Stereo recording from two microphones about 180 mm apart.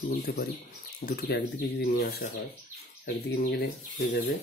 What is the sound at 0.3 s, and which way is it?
Speech, 60° left (ahead or behind).